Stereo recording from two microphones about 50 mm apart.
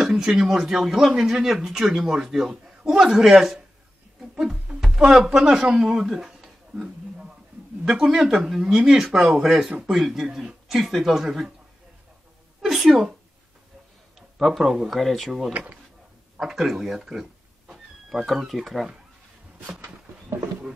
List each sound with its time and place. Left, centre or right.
0.0 s speech: centre
2.5 s a sound: centre
3.0 s speech: centre
4.2 s music: centre
4.9 s speech: centre
6.7 s a sound: centre
7.8 s speech: centre
12.6 s speech: centre
14.4 s speech: centre
15.5 s speech: right
16.3 s a sound: centre
18.5 s speech: centre